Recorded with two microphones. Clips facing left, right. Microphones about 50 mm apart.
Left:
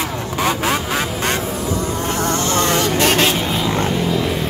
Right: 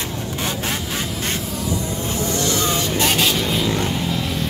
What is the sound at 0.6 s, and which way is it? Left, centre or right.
Quack, left.